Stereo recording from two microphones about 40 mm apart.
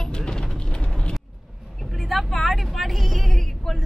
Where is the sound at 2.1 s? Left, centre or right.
Centre.